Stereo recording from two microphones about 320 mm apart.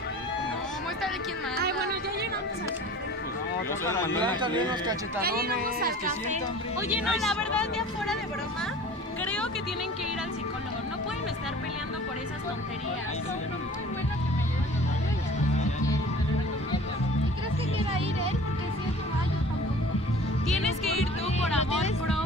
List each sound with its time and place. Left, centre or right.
3.8 s speech: centre
4.2 s speech: centre
5.2 s a woman's voice: right
6.9 s speech: centre
9.2 s music: centre